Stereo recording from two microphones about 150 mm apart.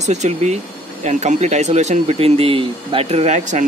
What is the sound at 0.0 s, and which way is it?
Speech, 50° right (ahead or behind).